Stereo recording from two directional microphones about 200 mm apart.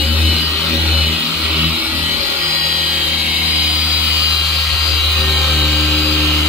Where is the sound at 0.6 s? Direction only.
10° right (ahead or behind).